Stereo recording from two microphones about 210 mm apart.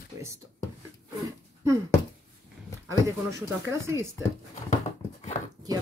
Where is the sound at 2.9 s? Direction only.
15° right (ahead or behind).